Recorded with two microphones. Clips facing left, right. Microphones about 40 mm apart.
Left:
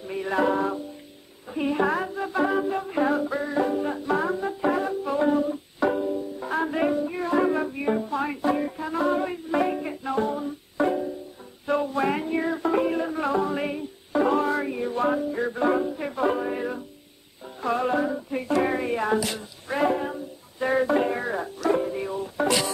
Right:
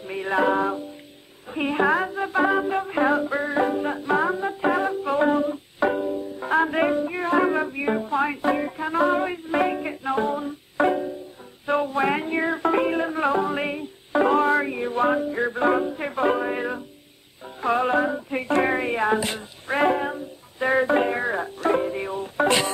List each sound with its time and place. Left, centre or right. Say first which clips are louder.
0.0 s music: right 2 dB; right